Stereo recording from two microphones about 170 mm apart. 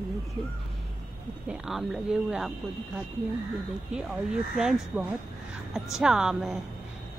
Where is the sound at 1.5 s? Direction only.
Centre (ahead or behind).